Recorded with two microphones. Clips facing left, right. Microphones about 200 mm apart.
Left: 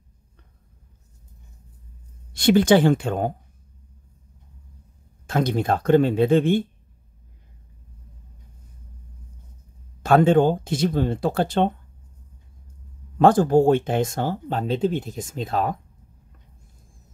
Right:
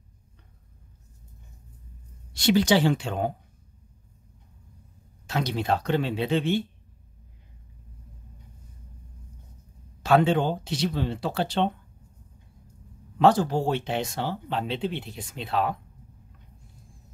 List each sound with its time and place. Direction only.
2.3 s speech: 55° left (ahead or behind)
5.2 s speech: 50° left (ahead or behind)
10.0 s speech: 50° left (ahead or behind)
13.2 s speech: 50° left (ahead or behind)